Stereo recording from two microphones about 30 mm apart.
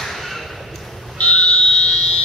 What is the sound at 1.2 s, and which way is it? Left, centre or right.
Fire alarm, left.